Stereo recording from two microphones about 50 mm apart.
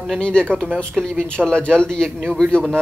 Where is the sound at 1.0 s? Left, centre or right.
Centre.